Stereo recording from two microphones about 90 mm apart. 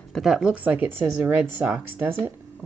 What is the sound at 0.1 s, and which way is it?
Speech, 5° right (ahead or behind).